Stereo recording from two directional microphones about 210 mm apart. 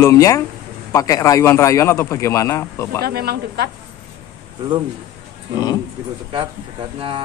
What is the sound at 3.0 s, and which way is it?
Speech, 50° right (ahead or behind).